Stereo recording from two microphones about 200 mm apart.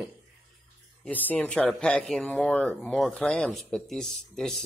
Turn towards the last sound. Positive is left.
turn(degrees=0)  # may be behind; listen again after turning